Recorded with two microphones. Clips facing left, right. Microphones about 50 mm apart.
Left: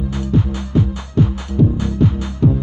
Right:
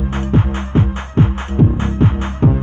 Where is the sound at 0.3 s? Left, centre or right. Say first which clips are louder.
Right 1 dB; right.